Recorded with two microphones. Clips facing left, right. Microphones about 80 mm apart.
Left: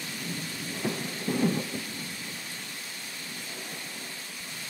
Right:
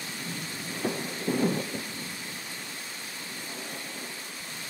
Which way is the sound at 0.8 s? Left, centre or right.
Centre.